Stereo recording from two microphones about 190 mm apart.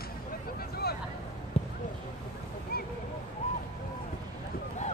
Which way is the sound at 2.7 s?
55° left (ahead or behind).